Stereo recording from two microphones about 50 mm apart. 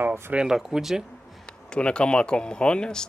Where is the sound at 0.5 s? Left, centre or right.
Centre.